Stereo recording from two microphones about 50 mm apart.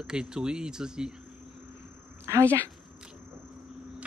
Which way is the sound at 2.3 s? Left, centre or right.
Right.